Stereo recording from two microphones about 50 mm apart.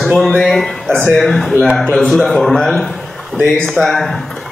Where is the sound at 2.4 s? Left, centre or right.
Centre.